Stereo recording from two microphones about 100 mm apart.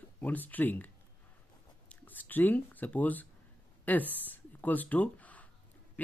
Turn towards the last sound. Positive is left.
turn(degrees=15)  # may be behind; listen again after turning